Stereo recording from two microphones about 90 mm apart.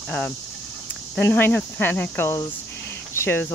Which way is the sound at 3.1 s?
25° left (ahead or behind).